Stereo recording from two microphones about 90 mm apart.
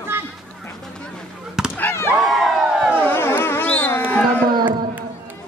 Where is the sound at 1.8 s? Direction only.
25° left (ahead or behind).